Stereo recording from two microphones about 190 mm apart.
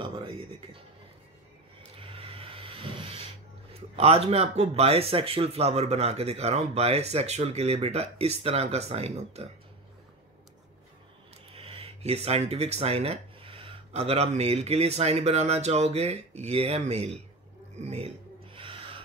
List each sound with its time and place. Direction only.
0.0 s speech: 30° right (ahead or behind)
1.8 s vehicle: 30° right (ahead or behind)
3.9 s speech: 30° right (ahead or behind)
11.5 s speech: 30° right (ahead or behind)
17.7 s a sound: 35° right (ahead or behind)